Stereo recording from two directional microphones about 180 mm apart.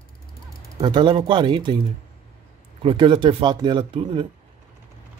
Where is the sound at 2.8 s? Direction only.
25° right (ahead or behind).